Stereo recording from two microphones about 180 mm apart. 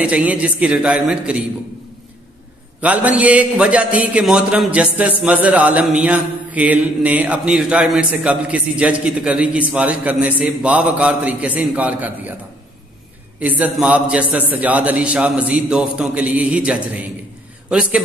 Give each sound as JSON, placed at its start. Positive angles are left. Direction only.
{"t": 0.0, "sound": "mantra", "side_deg": -10}
{"t": 2.8, "sound": "mantra", "side_deg": -10}
{"t": 13.4, "sound": "mantra", "side_deg": -10}
{"t": 17.6, "sound": "a man's voice", "side_deg": -5}